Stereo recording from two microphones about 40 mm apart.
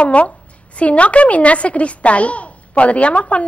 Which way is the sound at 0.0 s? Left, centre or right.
Left.